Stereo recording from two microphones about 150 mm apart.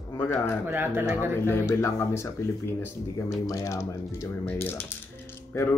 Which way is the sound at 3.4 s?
20° left (ahead or behind).